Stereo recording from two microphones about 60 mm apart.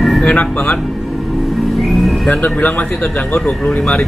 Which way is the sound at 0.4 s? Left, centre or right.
Left.